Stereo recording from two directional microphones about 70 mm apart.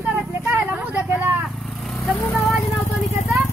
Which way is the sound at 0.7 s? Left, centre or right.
Right.